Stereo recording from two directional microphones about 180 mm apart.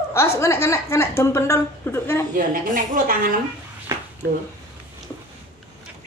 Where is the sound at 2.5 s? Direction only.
45° right (ahead or behind).